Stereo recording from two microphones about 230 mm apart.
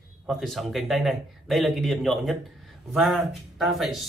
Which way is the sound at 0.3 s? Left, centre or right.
Centre.